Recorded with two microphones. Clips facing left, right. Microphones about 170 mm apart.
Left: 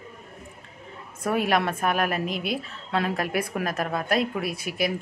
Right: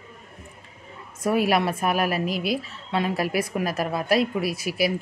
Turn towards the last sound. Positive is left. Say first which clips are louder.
# right 3 dB
turn(degrees=-5)  # may be behind; listen again after turning